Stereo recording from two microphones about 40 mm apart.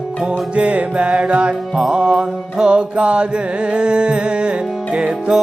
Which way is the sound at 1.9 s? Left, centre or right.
Right.